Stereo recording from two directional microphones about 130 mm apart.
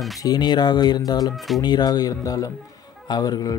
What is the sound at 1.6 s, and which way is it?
Speech, 30° left (ahead or behind).